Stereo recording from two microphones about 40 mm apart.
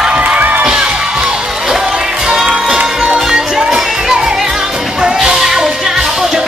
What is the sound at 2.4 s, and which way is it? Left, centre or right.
Music, centre.